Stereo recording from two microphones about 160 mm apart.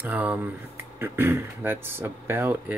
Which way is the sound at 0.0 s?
10° right (ahead or behind).